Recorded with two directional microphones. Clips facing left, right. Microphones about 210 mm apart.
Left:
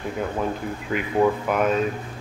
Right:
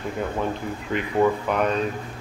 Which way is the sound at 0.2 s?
5° left (ahead or behind).